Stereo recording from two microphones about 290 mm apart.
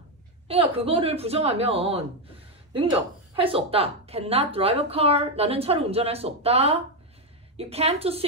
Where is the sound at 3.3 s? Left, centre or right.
Centre.